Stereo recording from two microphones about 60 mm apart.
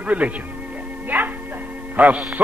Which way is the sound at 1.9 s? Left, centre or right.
Right.